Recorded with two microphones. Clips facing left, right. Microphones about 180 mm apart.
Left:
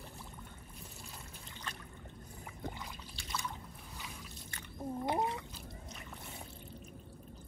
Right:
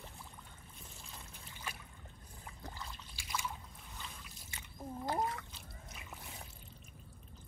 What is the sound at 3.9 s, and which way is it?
Boat, 5° left (ahead or behind).